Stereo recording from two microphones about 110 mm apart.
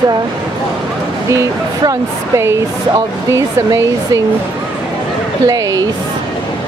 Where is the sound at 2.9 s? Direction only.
30° right (ahead or behind).